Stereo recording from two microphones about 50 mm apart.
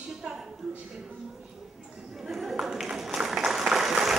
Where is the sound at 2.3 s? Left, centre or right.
Centre.